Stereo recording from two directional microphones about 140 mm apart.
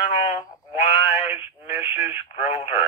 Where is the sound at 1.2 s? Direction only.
45° left (ahead or behind).